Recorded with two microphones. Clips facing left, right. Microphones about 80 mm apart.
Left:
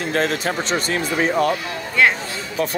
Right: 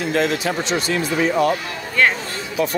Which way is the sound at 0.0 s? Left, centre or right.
Left.